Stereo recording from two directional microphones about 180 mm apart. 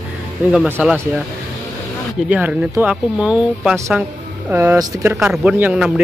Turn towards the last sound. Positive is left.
turn(degrees=-5)  # may be behind; listen again after turning